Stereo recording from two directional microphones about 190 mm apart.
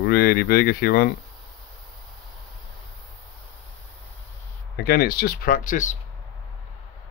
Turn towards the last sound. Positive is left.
turn(degrees=40)  # may be behind; listen again after turning